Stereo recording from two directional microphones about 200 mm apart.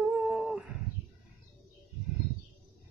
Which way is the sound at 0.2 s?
Centre (ahead or behind).